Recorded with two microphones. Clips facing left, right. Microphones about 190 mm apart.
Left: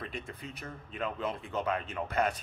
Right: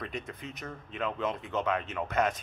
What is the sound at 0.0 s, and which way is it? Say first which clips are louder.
Speech: right 2 dB; 30° left (ahead or behind).